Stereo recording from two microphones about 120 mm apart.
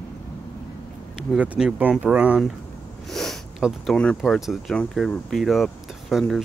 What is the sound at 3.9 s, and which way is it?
Speech, 5° left (ahead or behind).